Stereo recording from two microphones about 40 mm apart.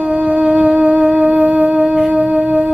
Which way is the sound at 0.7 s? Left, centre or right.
Right.